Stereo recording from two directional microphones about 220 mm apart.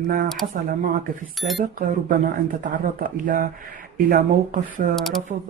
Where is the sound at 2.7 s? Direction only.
40° right (ahead or behind).